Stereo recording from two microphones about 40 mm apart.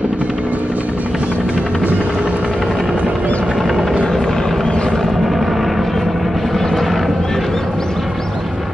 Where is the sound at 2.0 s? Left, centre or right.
Right.